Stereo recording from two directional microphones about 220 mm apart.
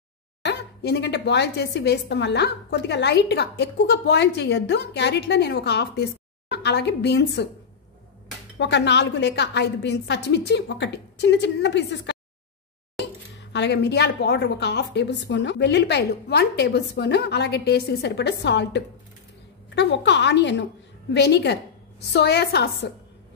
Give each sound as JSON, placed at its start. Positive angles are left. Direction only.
{"t": 0.4, "sound": "speech", "side_deg": 50}
{"t": 8.5, "sound": "speech", "side_deg": 55}